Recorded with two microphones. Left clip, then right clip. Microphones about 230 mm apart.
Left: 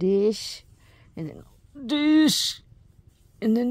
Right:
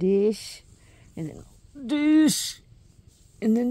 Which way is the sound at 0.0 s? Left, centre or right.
Left.